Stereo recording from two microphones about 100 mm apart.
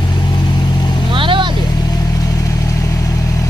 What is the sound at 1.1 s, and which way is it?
Vehicle, 60° right (ahead or behind).